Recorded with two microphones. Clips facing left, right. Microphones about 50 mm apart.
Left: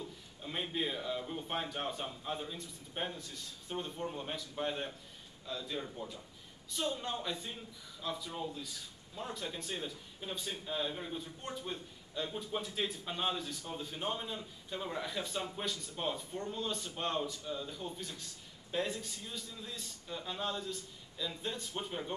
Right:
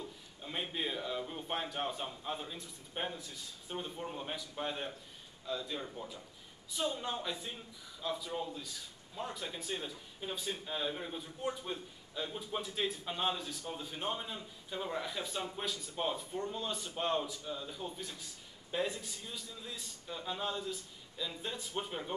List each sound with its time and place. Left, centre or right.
0.4 s a man's voice: centre